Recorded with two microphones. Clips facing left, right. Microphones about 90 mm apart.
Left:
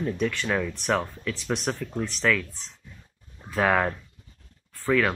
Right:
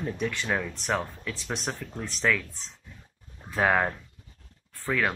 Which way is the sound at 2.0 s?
5° right (ahead or behind).